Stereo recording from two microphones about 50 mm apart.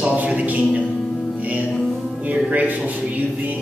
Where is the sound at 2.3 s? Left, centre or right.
Right.